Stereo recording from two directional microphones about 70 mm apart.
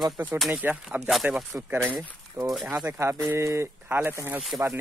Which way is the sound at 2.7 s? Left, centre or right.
Right.